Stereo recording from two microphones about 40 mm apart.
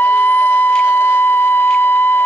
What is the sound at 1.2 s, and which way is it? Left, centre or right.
Alarm clock, left.